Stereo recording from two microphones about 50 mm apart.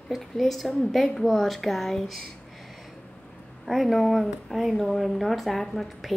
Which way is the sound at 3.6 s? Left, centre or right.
Centre.